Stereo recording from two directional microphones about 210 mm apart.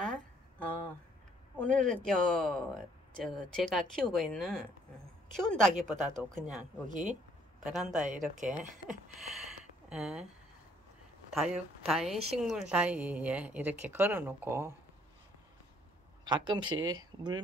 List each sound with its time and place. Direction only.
1.6 s speech: 5° left (ahead or behind)
6.4 s speech: 35° right (ahead or behind)
7.6 s speech: 5° right (ahead or behind)
8.0 s speech: 35° right (ahead or behind)
8.8 s a sound: centre (ahead or behind)
11.3 s a woman's voice: centre (ahead or behind)
16.3 s speech: 20° right (ahead or behind)